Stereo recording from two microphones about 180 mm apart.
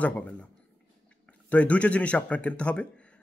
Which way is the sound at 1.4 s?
5° left (ahead or behind).